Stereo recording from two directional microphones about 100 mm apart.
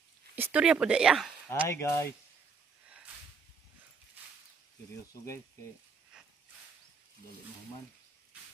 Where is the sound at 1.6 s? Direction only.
25° left (ahead or behind).